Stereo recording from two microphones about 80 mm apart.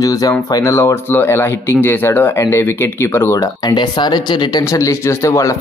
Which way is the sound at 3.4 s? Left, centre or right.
Left.